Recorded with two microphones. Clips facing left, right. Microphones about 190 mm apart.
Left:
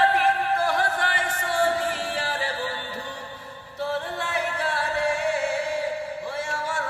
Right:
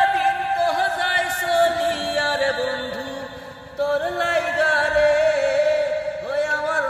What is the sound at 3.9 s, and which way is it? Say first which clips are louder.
Music: right 7 dB; 70° right (ahead or behind).